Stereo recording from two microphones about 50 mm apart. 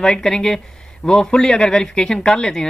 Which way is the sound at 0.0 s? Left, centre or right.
Centre.